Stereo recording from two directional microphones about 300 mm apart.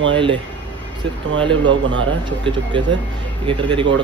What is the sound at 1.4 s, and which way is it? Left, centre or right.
Speech, centre.